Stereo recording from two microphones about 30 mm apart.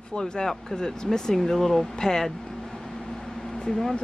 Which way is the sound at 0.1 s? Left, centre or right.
Left.